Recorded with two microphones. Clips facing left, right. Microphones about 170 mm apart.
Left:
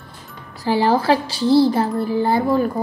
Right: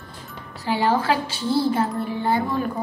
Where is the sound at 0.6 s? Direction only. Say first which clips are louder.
Left 4 dB; 40° left (ahead or behind).